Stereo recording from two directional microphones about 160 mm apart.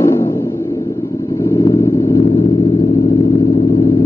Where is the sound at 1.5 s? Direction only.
25° left (ahead or behind).